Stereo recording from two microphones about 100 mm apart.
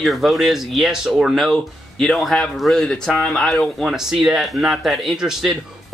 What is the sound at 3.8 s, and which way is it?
Speech, 5° right (ahead or behind).